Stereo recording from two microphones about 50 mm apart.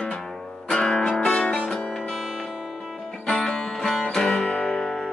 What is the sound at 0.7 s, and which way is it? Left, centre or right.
Music, centre.